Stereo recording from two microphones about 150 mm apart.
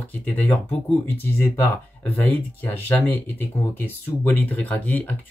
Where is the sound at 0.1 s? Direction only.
10° left (ahead or behind).